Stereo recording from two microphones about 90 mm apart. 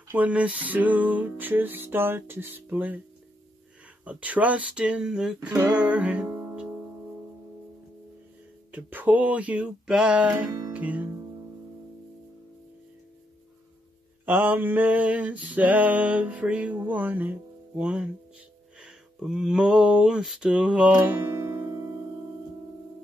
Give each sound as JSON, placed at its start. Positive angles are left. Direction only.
{"t": 0.1, "sound": "music", "side_deg": -15}
{"t": 4.0, "sound": "male singing", "side_deg": -15}
{"t": 5.6, "sound": "music", "side_deg": -15}
{"t": 6.2, "sound": "music", "side_deg": -25}
{"t": 6.5, "sound": "music", "side_deg": -15}
{"t": 8.7, "sound": "male singing", "side_deg": -20}
{"t": 10.7, "sound": "music", "side_deg": -20}
{"t": 14.2, "sound": "male singing", "side_deg": -20}
{"t": 16.7, "sound": "speech", "side_deg": -20}